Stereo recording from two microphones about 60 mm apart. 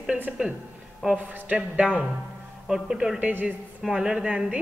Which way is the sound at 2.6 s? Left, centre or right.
Centre.